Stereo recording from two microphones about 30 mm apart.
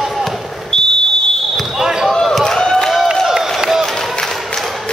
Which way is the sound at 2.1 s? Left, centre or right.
Centre.